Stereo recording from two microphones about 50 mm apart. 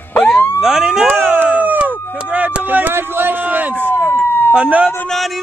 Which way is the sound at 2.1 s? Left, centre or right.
Right.